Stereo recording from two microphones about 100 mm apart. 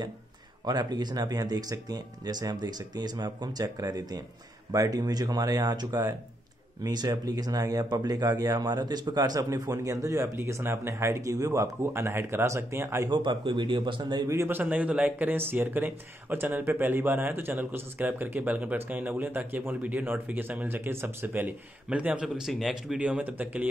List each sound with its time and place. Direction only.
0.7 s speech: 45° right (ahead or behind)
13.1 s speech: 50° right (ahead or behind)
14.3 s a man's voice: 30° right (ahead or behind)
14.6 s speech: 15° right (ahead or behind)